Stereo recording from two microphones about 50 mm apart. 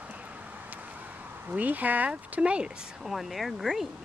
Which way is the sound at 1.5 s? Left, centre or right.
Right.